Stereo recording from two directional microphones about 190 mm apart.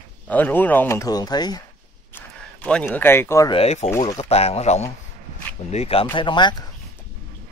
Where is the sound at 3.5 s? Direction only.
35° left (ahead or behind).